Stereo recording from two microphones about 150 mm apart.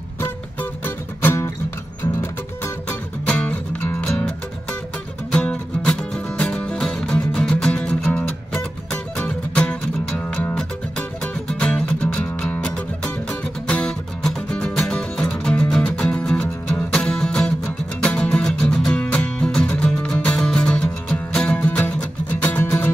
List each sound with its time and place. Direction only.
0.2 s music: 15° left (ahead or behind)
2.6 s music: 10° left (ahead or behind)
5.3 s music: 5° left (ahead or behind)